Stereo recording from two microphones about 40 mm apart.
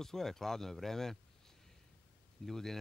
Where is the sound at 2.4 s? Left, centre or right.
Centre.